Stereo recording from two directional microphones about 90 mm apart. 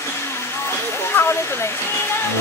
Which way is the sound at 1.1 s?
25° left (ahead or behind).